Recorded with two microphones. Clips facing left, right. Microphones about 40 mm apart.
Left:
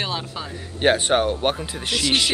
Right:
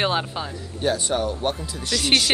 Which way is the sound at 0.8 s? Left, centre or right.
Left.